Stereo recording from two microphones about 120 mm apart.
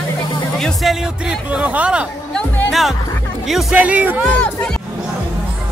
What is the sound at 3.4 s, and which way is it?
Speech, centre (ahead or behind).